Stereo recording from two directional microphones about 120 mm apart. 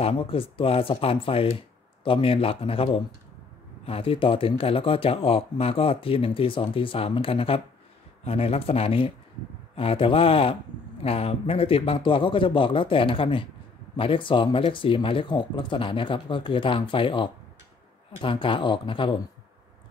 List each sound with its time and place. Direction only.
0.0 s speech: 50° left (ahead or behind)